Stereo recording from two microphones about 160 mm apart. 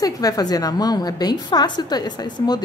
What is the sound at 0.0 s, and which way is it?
A woman's voice, 25° left (ahead or behind).